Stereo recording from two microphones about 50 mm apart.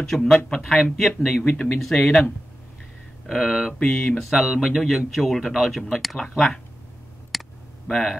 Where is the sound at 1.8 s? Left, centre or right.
Centre.